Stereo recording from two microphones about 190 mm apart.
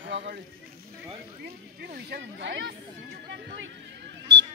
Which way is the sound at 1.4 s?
55° right (ahead or behind).